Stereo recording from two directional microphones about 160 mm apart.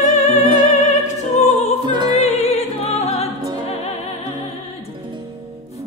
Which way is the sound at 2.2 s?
45° left (ahead or behind).